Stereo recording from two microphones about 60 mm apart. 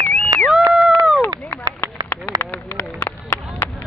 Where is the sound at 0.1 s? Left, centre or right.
Left.